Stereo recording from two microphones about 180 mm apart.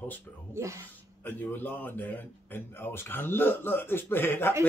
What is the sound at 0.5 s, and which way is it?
Speech, 15° right (ahead or behind).